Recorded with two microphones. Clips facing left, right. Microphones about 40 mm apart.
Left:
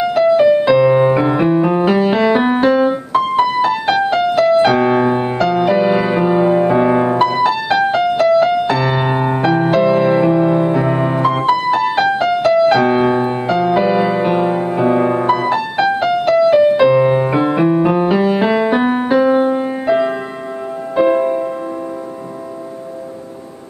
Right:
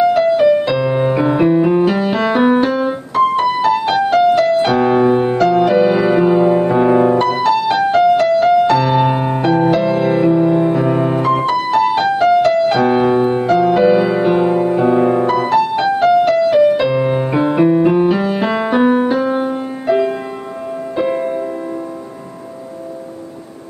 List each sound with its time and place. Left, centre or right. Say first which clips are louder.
0.1 s piano: left 1 dB; centre
3.8 s music: right 2 dB; centre
7.2 s music: even; centre
10.4 s music: right 1 dB; centre
14.5 s music: right 2 dB; left
15.5 s music: right 2 dB; centre
19.3 s music: left 4 dB; left
21.1 s music: left 4 dB; left